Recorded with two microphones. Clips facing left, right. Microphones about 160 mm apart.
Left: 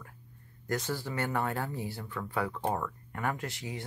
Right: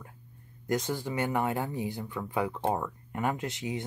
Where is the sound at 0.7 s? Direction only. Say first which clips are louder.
Right 3 dB; 20° right (ahead or behind).